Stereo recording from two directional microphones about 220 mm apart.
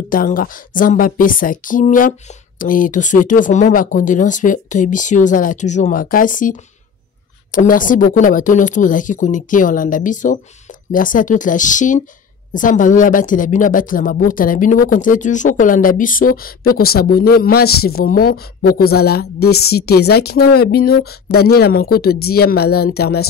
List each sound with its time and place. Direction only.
0.1 s a woman's voice: 40° left (ahead or behind)